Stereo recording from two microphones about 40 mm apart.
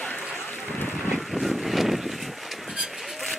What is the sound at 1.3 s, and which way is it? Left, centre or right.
Boat, centre.